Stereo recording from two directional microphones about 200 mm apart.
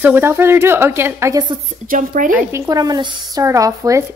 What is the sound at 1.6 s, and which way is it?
Speech, 40° right (ahead or behind).